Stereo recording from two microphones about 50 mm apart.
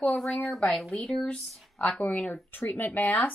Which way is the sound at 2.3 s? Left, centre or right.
Left.